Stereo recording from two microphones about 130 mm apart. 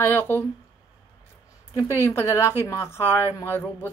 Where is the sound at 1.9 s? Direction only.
20° left (ahead or behind).